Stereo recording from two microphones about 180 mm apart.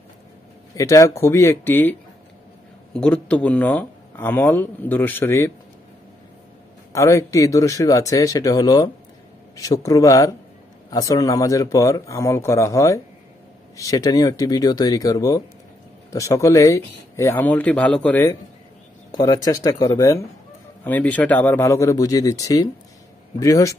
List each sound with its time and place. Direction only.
0.7 s speech: 20° left (ahead or behind)
6.9 s a man's voice: 15° left (ahead or behind)